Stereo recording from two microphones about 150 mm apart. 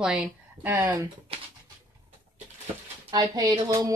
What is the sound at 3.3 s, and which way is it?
Music, 25° right (ahead or behind).